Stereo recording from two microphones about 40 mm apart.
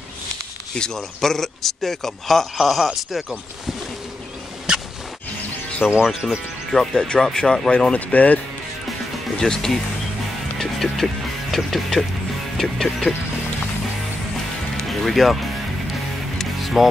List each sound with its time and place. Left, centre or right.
0.7 s a man's voice: centre
1.2 s a man's voice: centre
2.5 s speech: centre
5.8 s speech: centre
6.2 s a man's voice: centre
7.9 s speech: left
9.4 s a man's voice: centre
10.6 s music: centre
11.5 s a man's voice: centre
14.8 s music: centre